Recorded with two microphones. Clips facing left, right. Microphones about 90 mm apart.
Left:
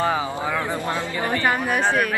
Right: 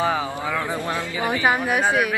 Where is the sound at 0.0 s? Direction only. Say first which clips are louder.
Even; centre (ahead or behind).